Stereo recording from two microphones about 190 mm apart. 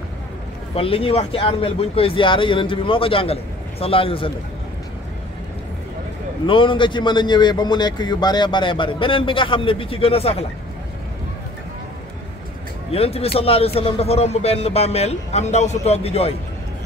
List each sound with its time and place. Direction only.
0.7 s a man's voice: 30° left (ahead or behind)
6.4 s a man's voice: 25° left (ahead or behind)
12.9 s speech: 30° left (ahead or behind)